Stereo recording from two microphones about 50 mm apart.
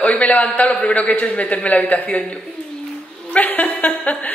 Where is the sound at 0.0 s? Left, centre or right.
Left.